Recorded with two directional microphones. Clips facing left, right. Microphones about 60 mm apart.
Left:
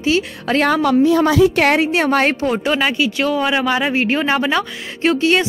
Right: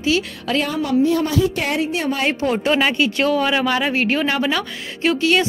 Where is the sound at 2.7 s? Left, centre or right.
Centre.